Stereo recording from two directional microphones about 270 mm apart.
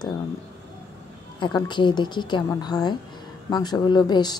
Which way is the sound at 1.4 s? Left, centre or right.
Centre.